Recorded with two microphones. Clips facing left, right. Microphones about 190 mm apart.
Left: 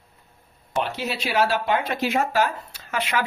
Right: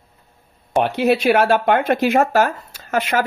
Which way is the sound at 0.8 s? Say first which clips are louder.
Right 12 dB; 60° right (ahead or behind).